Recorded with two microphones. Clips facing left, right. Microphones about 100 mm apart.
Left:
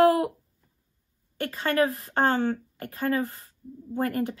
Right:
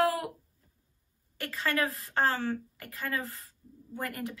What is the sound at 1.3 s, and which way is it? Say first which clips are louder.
Speech: left 6 dB; 30° left (ahead or behind).